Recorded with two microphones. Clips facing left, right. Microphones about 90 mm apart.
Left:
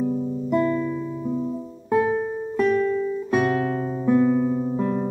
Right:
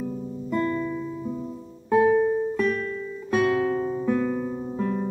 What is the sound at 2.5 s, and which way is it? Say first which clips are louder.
Music: left 5 dB; 25° left (ahead or behind).